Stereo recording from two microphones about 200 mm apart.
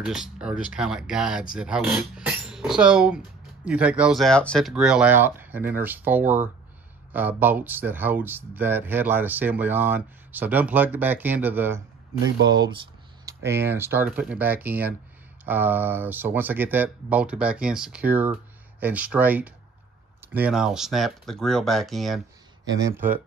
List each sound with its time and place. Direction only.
0.0 s speech: 5° right (ahead or behind)
22.7 s speech: 15° right (ahead or behind)